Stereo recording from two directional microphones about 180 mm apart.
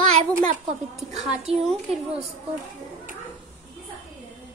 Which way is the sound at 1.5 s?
35° right (ahead or behind).